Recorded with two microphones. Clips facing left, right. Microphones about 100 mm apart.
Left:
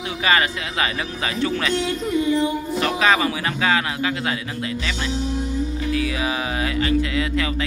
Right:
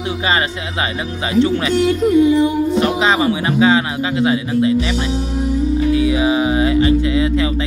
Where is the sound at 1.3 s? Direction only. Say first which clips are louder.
Right 9 dB; 20° right (ahead or behind).